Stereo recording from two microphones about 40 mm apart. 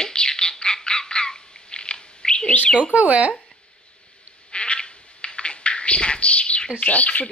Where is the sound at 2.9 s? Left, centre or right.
Right.